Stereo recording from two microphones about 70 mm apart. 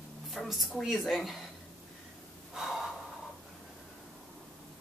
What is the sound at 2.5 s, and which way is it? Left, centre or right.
Gasp, centre.